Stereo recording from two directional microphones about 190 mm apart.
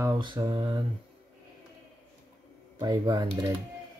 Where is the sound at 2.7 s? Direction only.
20° right (ahead or behind).